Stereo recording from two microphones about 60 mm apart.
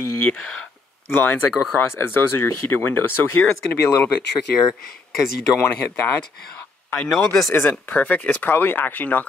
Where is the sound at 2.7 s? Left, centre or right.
Left.